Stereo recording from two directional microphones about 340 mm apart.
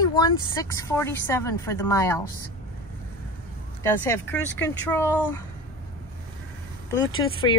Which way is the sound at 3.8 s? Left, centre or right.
Centre.